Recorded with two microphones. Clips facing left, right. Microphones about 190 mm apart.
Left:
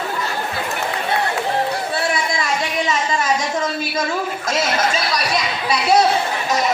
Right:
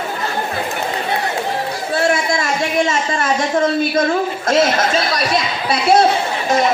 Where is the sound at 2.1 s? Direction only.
50° right (ahead or behind).